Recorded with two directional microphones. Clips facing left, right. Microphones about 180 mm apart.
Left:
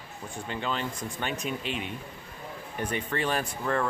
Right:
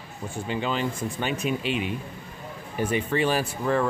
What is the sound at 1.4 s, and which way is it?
Speech, 90° right.